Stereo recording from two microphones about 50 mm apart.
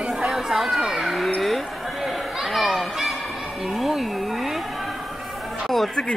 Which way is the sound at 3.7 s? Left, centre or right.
Centre.